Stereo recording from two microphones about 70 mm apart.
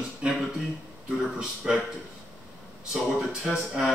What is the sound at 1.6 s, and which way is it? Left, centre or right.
Speech, centre.